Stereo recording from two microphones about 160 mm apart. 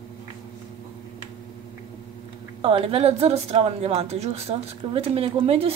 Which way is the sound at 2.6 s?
35° right (ahead or behind).